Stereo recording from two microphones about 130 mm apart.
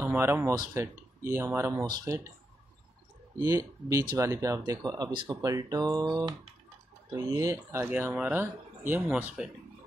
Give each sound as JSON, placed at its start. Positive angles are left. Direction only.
{"t": 0.0, "sound": "speech", "side_deg": -20}
{"t": 1.9, "sound": "speech", "side_deg": -30}
{"t": 3.3, "sound": "speech", "side_deg": -25}